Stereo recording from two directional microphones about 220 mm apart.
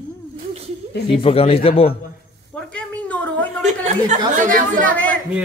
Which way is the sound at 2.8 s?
5° left (ahead or behind).